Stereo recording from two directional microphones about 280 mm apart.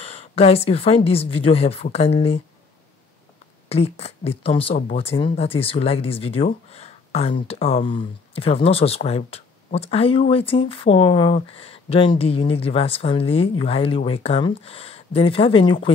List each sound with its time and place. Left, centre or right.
0.0 s speech: centre
3.6 s speech: left